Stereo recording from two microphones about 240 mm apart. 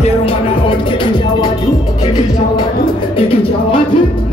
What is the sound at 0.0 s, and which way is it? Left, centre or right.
Music, left.